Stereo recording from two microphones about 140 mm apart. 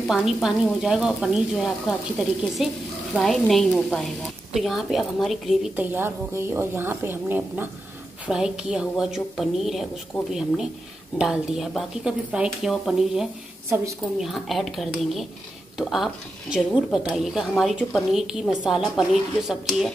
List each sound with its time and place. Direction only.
0.0 s speech: 5° right (ahead or behind)
5.9 s a woman's voice: 15° right (ahead or behind); by 10.3 s 5° left (ahead or behind)
11.1 s speech: 5° right (ahead or behind)